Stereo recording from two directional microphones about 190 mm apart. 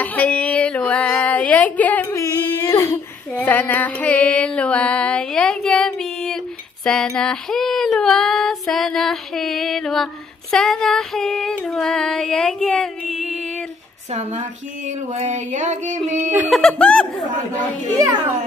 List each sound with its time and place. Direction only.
0.0 s speech: 10° left (ahead or behind)
10.5 s female singing: 5° left (ahead or behind)
14.9 s a sound: 40° right (ahead or behind)
16.3 s female singing: 5° right (ahead or behind)
17.9 s speech: 20° right (ahead or behind)